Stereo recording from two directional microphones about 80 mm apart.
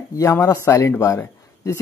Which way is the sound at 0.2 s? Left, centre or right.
Left.